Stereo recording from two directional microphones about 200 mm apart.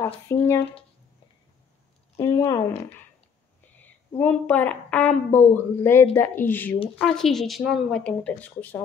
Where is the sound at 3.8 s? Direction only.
10° left (ahead or behind).